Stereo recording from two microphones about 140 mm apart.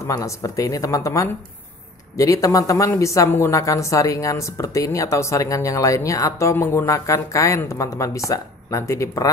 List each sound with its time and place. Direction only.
0.0 s speech: 25° left (ahead or behind)